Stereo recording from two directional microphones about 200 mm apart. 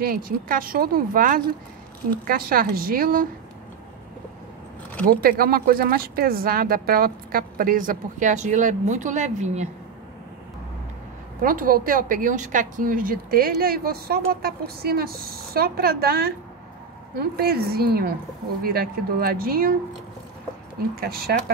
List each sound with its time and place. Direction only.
0.0 s a woman's voice: 45° right (ahead or behind)
5.2 s a woman's voice: 45° right (ahead or behind)
11.4 s a woman's voice: 45° right (ahead or behind)
20.9 s a woman's voice: 50° right (ahead or behind)